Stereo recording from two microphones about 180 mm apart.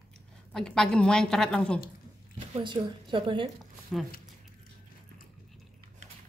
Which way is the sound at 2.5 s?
25° right (ahead or behind).